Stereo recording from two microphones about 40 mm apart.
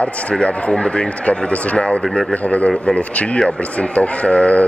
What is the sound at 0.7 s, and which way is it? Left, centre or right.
Speech, centre.